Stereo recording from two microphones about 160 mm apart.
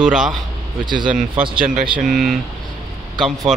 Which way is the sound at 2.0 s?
Centre (ahead or behind).